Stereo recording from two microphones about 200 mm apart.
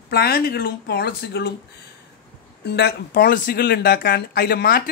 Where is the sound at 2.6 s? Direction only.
55° left (ahead or behind).